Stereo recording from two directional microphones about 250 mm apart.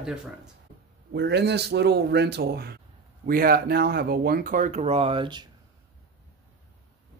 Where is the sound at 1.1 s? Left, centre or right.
Right; by 5.4 s centre.